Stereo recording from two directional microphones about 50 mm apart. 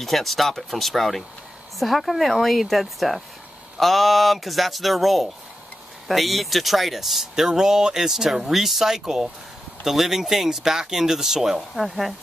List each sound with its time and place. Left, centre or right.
0.0 s speech: centre